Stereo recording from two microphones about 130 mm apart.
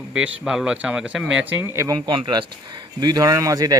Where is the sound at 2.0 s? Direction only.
35° right (ahead or behind).